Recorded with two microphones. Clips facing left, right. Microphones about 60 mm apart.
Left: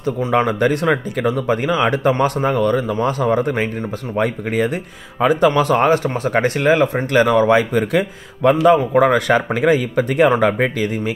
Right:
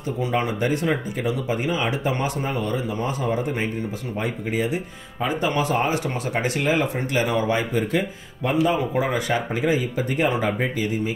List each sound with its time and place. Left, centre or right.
0.5 s a man's voice: left
1.2 s speech: left
6.0 s speech: left
7.1 s a man's voice: left